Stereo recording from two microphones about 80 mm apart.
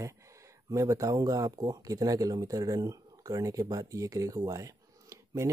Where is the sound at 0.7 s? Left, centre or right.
Right.